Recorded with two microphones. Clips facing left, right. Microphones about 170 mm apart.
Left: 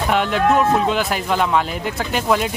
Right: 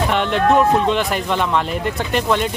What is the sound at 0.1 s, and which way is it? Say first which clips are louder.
Speech: left 1 dB; 5° left (ahead or behind).